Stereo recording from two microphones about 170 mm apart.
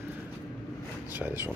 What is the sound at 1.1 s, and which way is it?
Speech, 10° right (ahead or behind).